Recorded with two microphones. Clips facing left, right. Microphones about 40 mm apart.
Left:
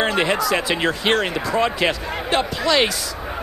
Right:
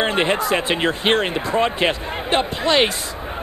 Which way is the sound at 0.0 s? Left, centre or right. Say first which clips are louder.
Even; right.